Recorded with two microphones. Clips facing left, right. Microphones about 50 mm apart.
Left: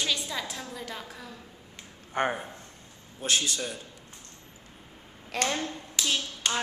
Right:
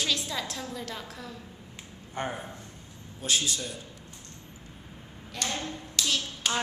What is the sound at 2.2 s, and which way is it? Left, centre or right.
Speech, left.